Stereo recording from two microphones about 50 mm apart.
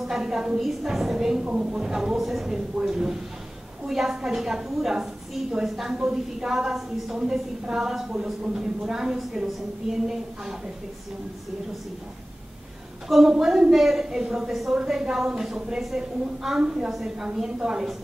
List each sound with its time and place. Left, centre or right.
0.0 s a sound: centre
0.6 s a woman's voice: centre
1.4 s a woman's voice: centre
2.5 s a woman's voice: centre
13.1 s a woman's voice: centre